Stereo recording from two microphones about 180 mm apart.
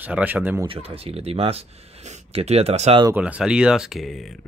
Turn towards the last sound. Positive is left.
turn(degrees=0)  # may be behind; listen again after turning